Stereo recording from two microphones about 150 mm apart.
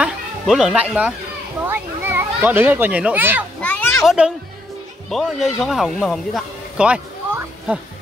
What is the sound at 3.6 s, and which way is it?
Children playing, 15° left (ahead or behind).